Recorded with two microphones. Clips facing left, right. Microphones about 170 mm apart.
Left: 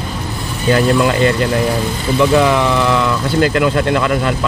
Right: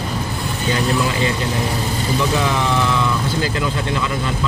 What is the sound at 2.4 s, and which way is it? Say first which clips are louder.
Speech: left 6 dB; 70° left (ahead or behind).